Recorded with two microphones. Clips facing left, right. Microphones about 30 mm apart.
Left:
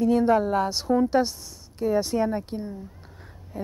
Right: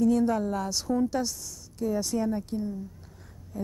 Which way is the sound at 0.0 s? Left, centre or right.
Left.